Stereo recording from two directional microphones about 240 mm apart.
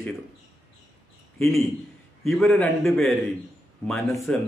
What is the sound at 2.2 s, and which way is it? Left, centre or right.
A man's voice, centre.